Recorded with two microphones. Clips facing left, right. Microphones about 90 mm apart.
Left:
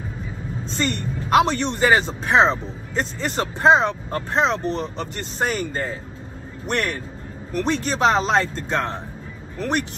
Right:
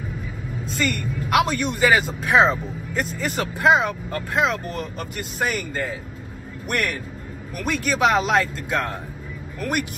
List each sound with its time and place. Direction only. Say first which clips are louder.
0.7 s speech: even; 30° left (ahead or behind)